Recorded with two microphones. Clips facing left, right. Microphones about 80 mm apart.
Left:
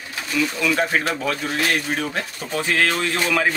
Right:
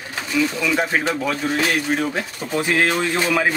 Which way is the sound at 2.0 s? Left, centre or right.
Centre.